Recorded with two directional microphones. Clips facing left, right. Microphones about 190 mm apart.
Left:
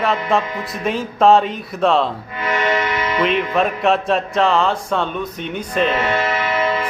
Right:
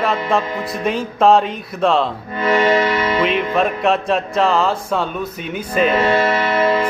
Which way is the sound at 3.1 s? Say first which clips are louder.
Left 3 dB; centre (ahead or behind).